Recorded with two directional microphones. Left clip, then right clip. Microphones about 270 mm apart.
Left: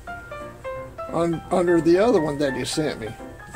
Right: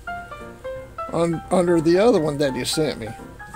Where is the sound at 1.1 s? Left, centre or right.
Right.